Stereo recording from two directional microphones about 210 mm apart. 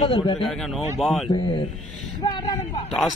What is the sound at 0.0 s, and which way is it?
Speech, 25° left (ahead or behind).